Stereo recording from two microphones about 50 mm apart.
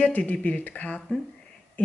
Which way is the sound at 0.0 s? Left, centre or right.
Left.